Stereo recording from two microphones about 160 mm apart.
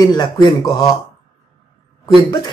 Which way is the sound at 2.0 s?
20° left (ahead or behind).